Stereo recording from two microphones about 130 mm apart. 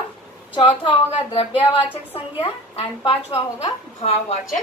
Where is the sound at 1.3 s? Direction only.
40° left (ahead or behind).